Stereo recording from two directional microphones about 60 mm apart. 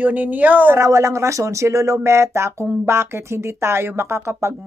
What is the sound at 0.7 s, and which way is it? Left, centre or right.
Speech, right.